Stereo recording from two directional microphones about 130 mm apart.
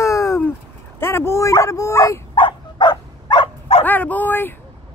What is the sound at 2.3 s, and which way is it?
Dog, 40° left (ahead or behind).